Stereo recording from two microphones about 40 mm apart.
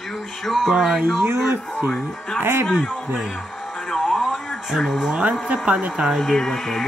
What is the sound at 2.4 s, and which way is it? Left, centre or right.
Speech, right.